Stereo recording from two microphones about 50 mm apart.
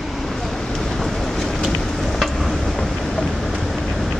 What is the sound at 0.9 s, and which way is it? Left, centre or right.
Vehicle, centre.